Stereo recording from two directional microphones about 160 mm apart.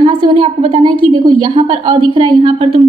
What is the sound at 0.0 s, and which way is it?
A woman's voice, 35° right (ahead or behind).